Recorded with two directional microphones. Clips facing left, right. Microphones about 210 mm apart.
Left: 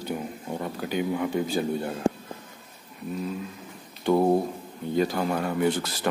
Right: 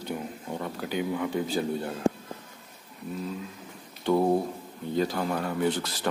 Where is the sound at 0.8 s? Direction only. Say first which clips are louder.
Left 2 dB; 15° left (ahead or behind).